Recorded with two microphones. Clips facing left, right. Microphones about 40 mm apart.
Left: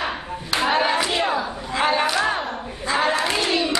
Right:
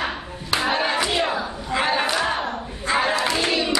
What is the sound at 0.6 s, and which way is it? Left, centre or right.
Crowd, centre.